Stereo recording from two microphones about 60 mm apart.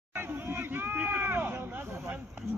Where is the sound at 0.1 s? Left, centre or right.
Right.